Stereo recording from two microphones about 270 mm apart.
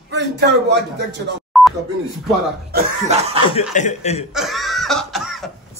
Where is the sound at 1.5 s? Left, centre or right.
Centre.